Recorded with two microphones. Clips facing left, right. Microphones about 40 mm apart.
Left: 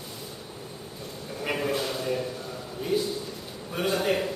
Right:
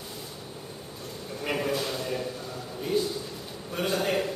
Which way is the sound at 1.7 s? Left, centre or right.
Centre.